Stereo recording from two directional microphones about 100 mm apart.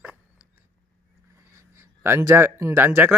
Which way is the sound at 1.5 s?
30° right (ahead or behind).